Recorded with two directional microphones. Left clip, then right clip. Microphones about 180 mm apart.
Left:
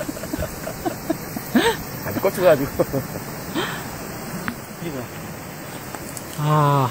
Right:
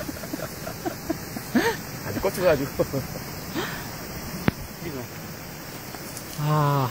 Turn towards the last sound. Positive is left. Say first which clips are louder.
# left 6 dB
turn(degrees=5)  # may be behind; listen again after turning